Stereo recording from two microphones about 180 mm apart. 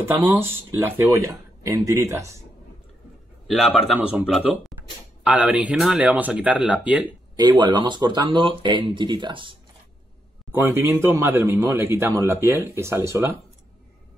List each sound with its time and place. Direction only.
0.0 s speech: 10° right (ahead or behind)
3.4 s speech: centre (ahead or behind)
7.3 s speech: 25° right (ahead or behind)
10.5 s speech: 15° right (ahead or behind)